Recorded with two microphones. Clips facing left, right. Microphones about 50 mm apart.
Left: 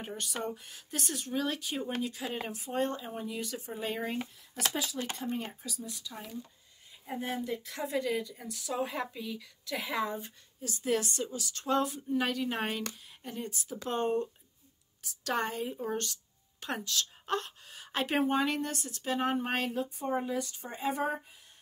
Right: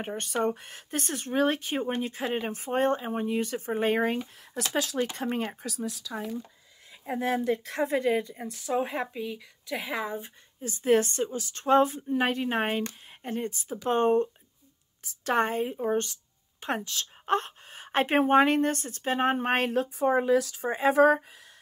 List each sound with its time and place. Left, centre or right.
0.0 s speech: right; by 10.3 s centre
10.6 s speech: right
19.8 s a woman's voice: right